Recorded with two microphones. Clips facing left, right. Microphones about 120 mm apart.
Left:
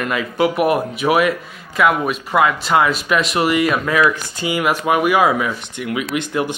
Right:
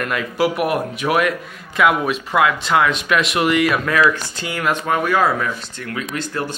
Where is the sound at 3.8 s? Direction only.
15° left (ahead or behind).